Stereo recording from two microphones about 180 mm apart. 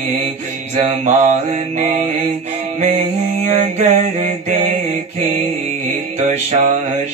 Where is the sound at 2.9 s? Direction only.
40° right (ahead or behind).